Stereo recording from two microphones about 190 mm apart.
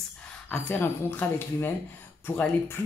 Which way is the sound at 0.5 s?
10° left (ahead or behind).